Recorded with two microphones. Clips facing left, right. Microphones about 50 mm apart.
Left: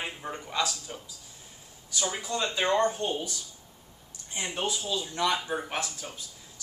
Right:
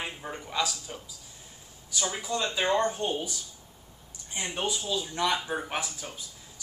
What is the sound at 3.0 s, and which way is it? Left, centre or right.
Speech, centre.